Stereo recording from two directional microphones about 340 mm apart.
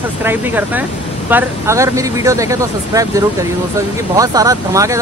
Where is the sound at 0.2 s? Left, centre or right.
Centre.